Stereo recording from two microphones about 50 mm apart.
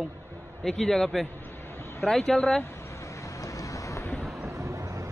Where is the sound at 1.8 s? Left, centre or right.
Left.